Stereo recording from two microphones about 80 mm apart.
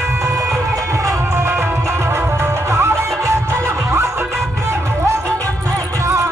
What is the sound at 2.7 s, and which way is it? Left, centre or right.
Music, right.